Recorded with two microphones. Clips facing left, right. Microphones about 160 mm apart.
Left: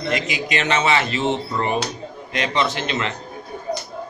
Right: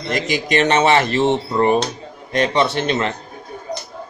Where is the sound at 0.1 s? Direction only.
45° right (ahead or behind).